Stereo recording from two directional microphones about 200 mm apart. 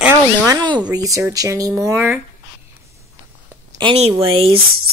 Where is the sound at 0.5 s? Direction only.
20° right (ahead or behind).